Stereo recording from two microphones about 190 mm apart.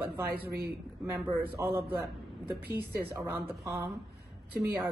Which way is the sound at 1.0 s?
10° right (ahead or behind).